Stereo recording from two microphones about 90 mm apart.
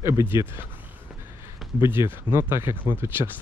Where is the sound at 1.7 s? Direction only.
25° right (ahead or behind).